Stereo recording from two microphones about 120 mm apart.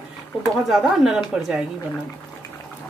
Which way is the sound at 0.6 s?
Centre (ahead or behind).